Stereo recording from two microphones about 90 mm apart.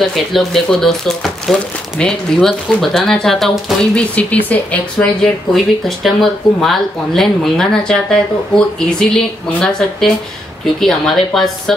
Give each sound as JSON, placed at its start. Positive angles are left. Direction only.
{"t": 0.0, "sound": "speech", "side_deg": 5}
{"t": 4.1, "sound": "speech", "side_deg": 15}
{"t": 5.2, "sound": "speech", "side_deg": 5}